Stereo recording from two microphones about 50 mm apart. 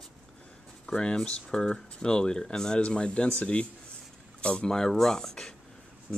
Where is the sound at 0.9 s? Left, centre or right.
Centre.